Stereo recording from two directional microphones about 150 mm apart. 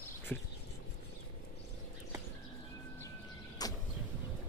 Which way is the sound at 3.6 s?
25° left (ahead or behind).